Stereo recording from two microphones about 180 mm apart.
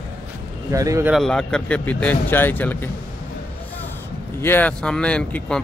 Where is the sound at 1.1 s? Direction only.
Centre (ahead or behind).